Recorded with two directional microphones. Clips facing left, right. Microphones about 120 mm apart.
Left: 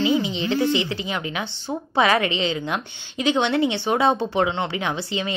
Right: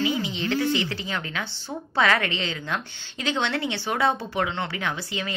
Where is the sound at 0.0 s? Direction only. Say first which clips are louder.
Left 5 dB; 20° left (ahead or behind).